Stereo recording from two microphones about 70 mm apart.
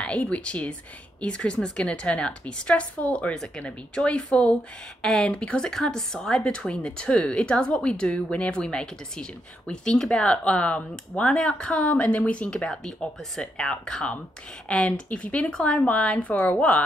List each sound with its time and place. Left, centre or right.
0.0 s speech: centre